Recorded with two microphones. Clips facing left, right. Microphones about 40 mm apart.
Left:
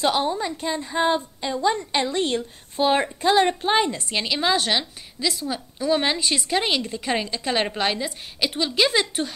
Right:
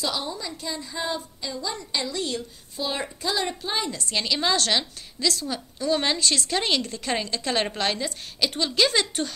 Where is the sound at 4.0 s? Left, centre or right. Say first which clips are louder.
Left 1 dB; left.